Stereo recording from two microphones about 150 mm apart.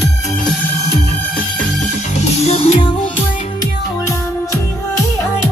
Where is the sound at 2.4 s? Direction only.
45° left (ahead or behind).